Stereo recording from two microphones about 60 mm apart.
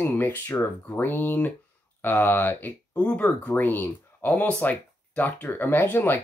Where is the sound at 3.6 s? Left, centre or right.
Left.